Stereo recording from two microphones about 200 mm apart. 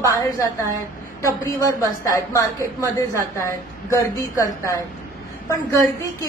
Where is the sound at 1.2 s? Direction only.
15° left (ahead or behind).